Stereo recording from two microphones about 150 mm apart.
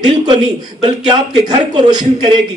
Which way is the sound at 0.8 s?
30° right (ahead or behind).